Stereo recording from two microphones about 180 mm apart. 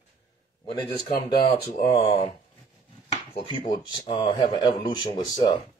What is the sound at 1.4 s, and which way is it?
Speech, 25° left (ahead or behind).